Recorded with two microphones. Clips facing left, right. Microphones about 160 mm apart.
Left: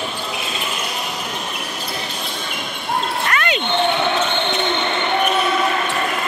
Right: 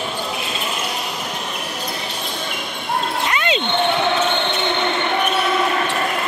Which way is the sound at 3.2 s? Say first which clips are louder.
Even; 20° right (ahead or behind).